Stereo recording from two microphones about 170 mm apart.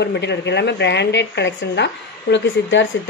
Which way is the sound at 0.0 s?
90° left.